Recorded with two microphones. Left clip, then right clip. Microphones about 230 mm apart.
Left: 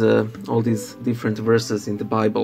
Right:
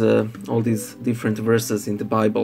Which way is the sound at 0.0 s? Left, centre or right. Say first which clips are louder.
Left 1 dB; centre.